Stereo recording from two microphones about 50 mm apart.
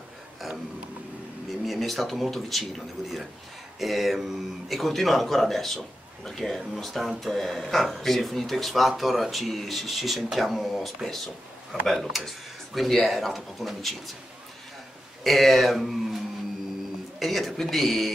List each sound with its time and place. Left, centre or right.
1.7 s speech: centre
15.2 s speech: centre
17.2 s speech: centre